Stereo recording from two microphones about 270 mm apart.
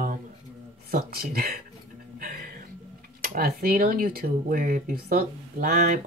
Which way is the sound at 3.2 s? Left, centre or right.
Right.